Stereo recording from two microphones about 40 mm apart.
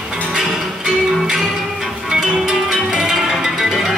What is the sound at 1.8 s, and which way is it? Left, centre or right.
Music, centre.